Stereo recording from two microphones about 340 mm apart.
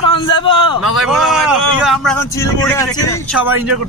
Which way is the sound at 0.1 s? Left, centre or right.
Centre.